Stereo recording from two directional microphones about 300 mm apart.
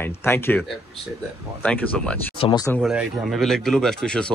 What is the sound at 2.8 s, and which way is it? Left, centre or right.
Speech, centre.